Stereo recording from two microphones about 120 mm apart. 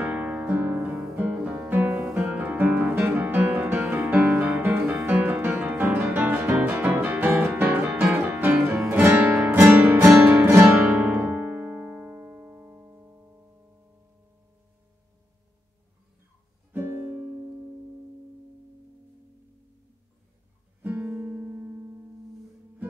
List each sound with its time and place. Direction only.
0.0 s music: 10° right (ahead or behind)
16.7 s music: 15° right (ahead or behind)
20.8 s music: 15° right (ahead or behind)